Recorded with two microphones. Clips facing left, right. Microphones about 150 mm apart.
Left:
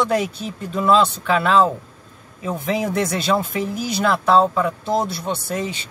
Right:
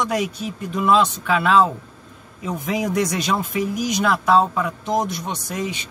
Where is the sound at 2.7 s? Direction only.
15° right (ahead or behind).